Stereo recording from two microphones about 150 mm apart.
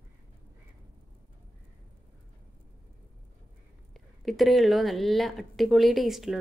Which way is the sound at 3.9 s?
Centre (ahead or behind).